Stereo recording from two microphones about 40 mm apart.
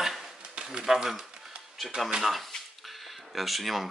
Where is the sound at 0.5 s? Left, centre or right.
Right.